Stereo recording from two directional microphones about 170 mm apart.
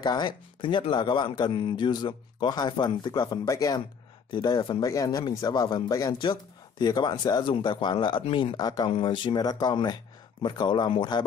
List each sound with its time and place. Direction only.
0.0 s speech: 25° left (ahead or behind)